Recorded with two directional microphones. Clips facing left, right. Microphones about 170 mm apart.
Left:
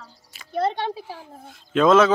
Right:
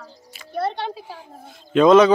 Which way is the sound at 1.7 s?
5° left (ahead or behind).